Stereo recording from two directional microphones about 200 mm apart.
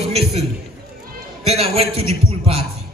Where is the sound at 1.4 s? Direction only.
30° right (ahead or behind).